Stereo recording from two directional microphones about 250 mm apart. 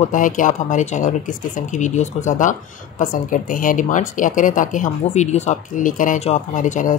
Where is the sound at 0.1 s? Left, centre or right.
Left.